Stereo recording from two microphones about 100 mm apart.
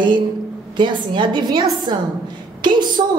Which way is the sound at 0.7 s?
50° right (ahead or behind).